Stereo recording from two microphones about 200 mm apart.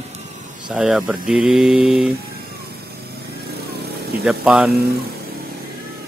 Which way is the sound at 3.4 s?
50° right (ahead or behind).